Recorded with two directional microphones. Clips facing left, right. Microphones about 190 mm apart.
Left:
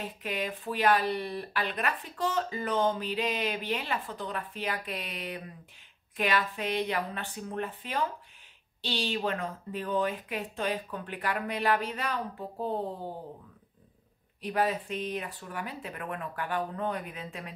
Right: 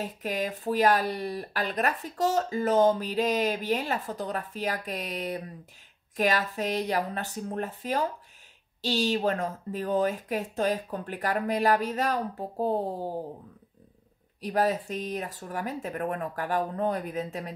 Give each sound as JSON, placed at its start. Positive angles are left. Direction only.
{"t": 0.0, "sound": "speech", "side_deg": -40}
{"t": 14.4, "sound": "speech", "side_deg": -40}